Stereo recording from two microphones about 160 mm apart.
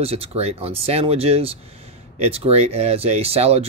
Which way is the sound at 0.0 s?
40° right (ahead or behind).